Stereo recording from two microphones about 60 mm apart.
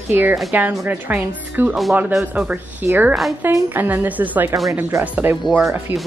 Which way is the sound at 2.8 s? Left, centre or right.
Right.